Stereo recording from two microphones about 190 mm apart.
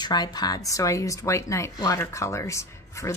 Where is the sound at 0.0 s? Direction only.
20° left (ahead or behind).